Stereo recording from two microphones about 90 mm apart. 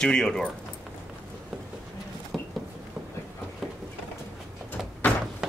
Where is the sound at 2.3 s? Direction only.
Centre (ahead or behind).